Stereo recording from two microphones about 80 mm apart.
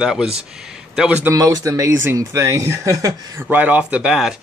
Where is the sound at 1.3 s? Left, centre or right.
Right.